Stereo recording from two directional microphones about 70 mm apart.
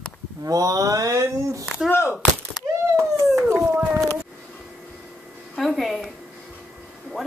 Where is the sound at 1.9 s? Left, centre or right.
Left.